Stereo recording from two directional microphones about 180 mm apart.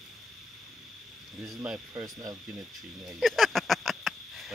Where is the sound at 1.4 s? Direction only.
5° right (ahead or behind).